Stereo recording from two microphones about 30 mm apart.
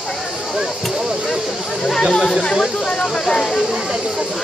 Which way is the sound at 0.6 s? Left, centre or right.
Right.